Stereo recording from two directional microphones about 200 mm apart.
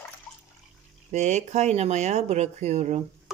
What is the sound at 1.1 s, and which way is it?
Speech, 35° right (ahead or behind).